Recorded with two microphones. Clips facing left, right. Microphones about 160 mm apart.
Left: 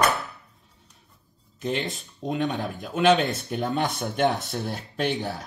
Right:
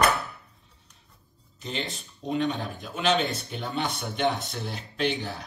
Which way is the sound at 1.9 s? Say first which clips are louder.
Even; 45° left (ahead or behind).